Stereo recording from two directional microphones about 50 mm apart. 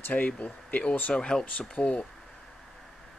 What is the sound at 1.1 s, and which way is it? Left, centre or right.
Speech, centre.